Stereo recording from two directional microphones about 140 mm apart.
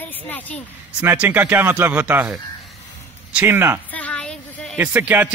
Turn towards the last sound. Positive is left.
turn(degrees=-10)  # may be behind; listen again after turning